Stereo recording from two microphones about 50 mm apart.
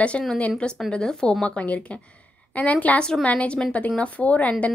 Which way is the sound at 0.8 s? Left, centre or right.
Centre.